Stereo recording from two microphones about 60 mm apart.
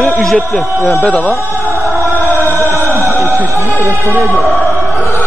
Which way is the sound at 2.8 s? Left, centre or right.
Right.